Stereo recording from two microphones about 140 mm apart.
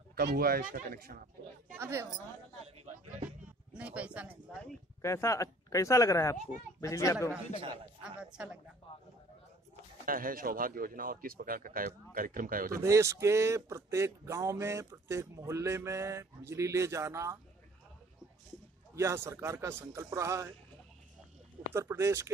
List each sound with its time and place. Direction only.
0.1 s a man's voice: 90° right
1.8 s speech: 20° right (ahead or behind)
3.7 s speech: 10° right (ahead or behind)
5.0 s speech: 20° left (ahead or behind)
8.0 s speech: 5° right (ahead or behind)
10.0 s a man's voice: 90° right
12.8 s speech: 20° right (ahead or behind)
18.9 s speech: 20° right (ahead or behind)
21.7 s speech: 20° right (ahead or behind)